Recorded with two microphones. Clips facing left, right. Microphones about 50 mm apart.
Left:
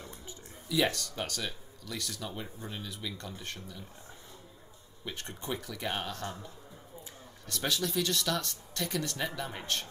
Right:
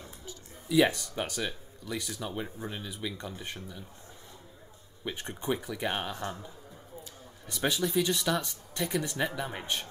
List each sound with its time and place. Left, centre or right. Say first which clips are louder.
0.7 s speech: right 5 dB; centre
5.0 s speech: right 6 dB; centre
7.4 s speech: right 3 dB; centre